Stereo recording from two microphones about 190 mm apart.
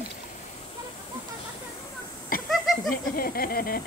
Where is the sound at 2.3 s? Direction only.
50° left (ahead or behind).